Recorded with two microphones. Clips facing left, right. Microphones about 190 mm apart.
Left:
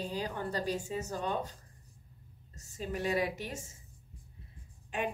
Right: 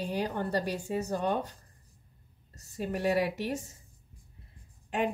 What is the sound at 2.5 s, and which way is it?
A woman's voice, 65° right (ahead or behind).